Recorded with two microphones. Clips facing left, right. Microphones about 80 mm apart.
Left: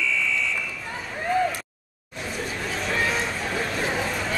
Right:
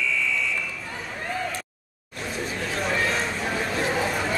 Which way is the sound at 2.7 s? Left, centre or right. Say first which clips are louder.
Right 1 dB; centre.